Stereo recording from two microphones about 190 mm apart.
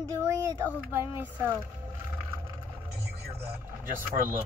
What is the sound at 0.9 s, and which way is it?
Speech, 10° right (ahead or behind).